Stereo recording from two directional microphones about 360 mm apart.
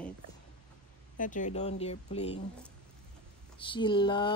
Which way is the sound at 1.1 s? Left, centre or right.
Left.